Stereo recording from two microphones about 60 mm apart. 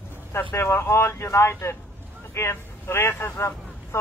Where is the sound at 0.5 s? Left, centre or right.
Left.